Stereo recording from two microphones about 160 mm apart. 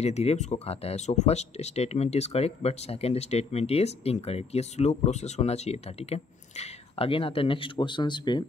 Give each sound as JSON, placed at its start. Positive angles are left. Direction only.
{"t": 0.0, "sound": "speech", "side_deg": 40}